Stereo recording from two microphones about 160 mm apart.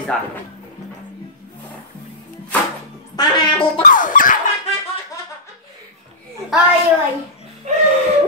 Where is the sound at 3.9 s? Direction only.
55° left (ahead or behind).